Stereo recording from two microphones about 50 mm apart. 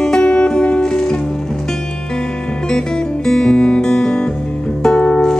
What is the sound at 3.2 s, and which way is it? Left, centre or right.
Music, centre.